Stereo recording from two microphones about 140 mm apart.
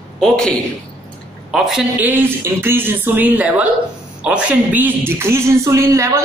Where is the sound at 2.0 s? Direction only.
15° right (ahead or behind).